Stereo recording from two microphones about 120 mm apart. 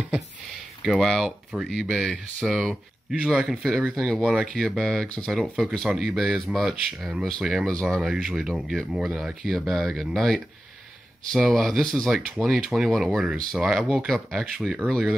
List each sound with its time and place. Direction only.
0.8 s speech: centre (ahead or behind)
8.0 s speech: 5° right (ahead or behind)